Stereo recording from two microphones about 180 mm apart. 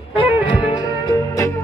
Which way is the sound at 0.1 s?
30° left (ahead or behind).